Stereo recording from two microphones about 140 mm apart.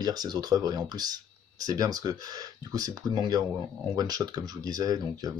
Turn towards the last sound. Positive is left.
turn(degrees=-25)  # may be behind; listen again after turning